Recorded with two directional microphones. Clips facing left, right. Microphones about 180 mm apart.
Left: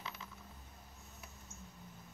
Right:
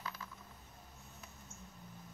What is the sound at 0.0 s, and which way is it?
Coin, 20° left (ahead or behind).